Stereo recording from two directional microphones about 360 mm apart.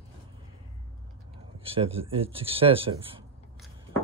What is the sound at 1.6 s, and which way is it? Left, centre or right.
Speech, centre.